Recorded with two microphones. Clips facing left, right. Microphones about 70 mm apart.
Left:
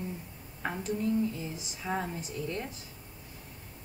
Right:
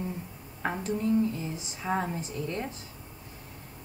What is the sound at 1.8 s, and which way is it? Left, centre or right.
Speech, right.